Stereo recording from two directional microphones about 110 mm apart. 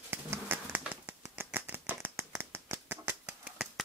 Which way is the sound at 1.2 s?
20° right (ahead or behind).